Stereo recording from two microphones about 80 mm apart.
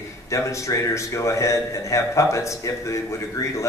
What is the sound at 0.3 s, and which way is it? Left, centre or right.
A man's voice, left.